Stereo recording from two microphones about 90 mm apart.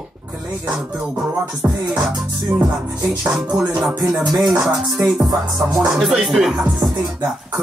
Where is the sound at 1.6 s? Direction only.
25° right (ahead or behind).